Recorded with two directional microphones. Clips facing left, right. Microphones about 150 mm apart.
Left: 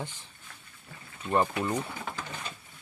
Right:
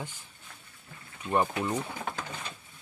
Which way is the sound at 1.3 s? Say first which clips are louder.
Left 1 dB; 10° right (ahead or behind).